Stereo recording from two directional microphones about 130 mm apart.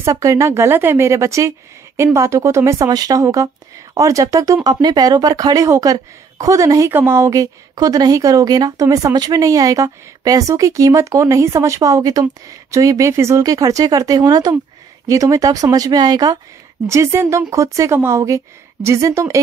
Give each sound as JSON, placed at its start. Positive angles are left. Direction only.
{"t": 0.0, "sound": "a woman's voice", "side_deg": -25}